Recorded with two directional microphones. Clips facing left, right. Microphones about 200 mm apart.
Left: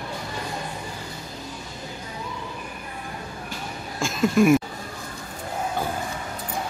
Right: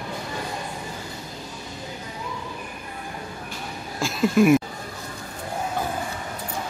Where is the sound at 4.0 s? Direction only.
5° right (ahead or behind).